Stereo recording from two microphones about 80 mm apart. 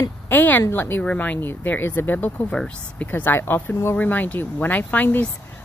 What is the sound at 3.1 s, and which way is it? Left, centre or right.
Speech, left.